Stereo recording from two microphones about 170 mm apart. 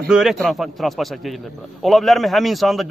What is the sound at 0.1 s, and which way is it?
A man's voice, centre (ahead or behind).